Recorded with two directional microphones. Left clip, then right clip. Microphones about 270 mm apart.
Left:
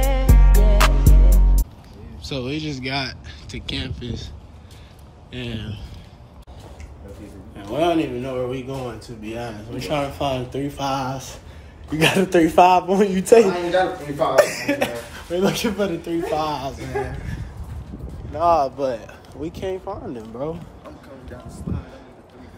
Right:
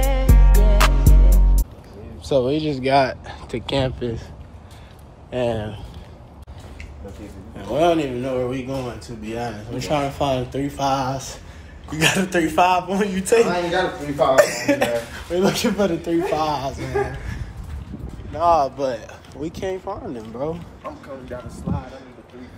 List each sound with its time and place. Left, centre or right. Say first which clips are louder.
0.0 s music: even; centre
2.4 s speech: right 6 dB; centre
5.3 s speech: right 10 dB; centre
7.5 s speech: right 2 dB; centre
11.9 s speech: left 2 dB; left
14.3 s speech: right 1 dB; centre
18.3 s speech: right 1 dB; centre